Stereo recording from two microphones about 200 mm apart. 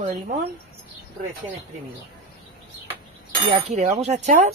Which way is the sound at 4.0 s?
35° right (ahead or behind).